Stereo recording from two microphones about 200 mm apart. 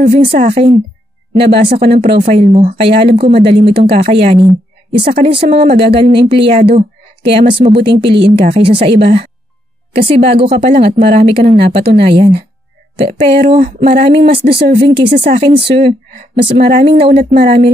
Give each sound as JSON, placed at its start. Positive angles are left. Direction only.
{"t": 0.0, "sound": "a woman's voice", "side_deg": -30}
{"t": 14.2, "sound": "speech", "side_deg": -50}
{"t": 15.0, "sound": "a woman's voice", "side_deg": -30}